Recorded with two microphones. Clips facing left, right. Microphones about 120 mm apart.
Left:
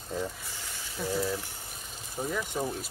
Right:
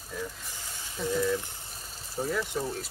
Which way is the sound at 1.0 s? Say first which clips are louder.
Right 2 dB; 5° left (ahead or behind).